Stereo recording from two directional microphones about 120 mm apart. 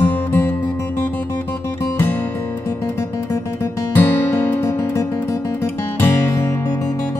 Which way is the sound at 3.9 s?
15° left (ahead or behind).